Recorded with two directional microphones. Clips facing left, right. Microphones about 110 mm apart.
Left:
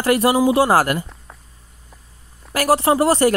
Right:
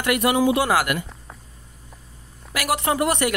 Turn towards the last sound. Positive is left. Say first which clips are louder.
# left 6 dB
turn(degrees=35)  # may be behind; listen again after turning